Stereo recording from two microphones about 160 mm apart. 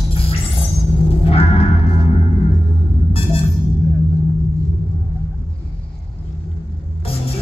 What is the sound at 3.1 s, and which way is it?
Music, 35° left (ahead or behind).